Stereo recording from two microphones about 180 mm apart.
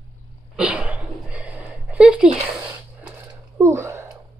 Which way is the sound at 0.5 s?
5° right (ahead or behind).